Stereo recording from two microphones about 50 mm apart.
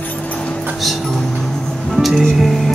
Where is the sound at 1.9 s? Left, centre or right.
Centre.